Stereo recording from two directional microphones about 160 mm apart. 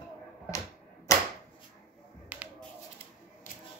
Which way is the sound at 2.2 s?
10° right (ahead or behind).